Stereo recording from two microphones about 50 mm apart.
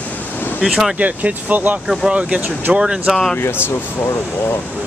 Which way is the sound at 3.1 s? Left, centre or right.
Centre.